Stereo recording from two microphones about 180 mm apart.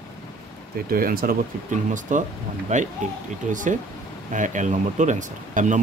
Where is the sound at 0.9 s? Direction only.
55° right (ahead or behind).